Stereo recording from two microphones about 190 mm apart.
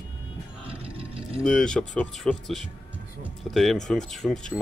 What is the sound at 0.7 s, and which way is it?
Music, 30° right (ahead or behind).